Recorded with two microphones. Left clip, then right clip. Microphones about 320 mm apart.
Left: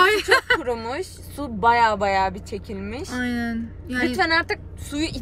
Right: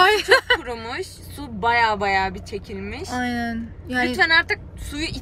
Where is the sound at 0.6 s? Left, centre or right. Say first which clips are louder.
Left 3 dB; centre.